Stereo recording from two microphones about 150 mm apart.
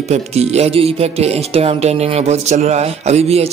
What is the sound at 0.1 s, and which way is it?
A man's voice, 45° right (ahead or behind).